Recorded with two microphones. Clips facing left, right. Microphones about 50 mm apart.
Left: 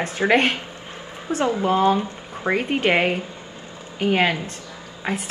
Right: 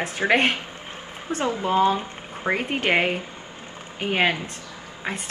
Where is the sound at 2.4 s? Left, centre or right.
Centre.